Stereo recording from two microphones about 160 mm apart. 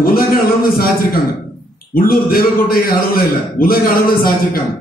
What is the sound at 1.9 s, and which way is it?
A man's voice, 65° left (ahead or behind).